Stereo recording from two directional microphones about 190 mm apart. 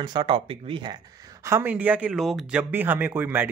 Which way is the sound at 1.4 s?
10° right (ahead or behind).